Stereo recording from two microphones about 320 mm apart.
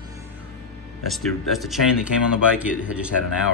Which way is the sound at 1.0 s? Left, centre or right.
Centre.